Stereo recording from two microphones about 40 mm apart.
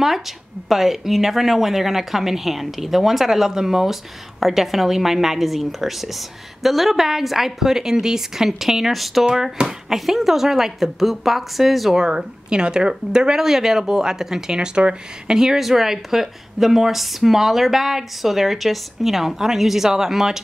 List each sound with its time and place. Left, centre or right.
0.7 s a woman's voice: centre
12.0 s speech: centre
14.8 s speech: right
15.3 s speech: centre